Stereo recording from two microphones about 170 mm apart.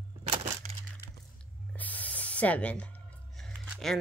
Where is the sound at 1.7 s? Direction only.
10° left (ahead or behind).